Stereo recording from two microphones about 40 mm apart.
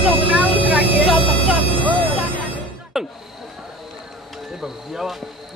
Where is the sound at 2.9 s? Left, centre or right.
Centre.